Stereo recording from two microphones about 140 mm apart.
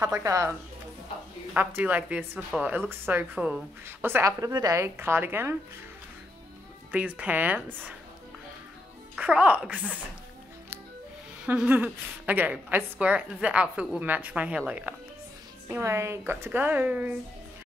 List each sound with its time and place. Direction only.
0.0 s a woman's voice: 20° right (ahead or behind)
6.9 s a woman's voice: 10° right (ahead or behind)
9.1 s a woman's voice: 5° right (ahead or behind)
11.4 s a woman's voice: 10° right (ahead or behind)